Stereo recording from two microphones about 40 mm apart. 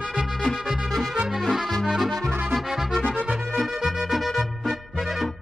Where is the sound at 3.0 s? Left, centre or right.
Left.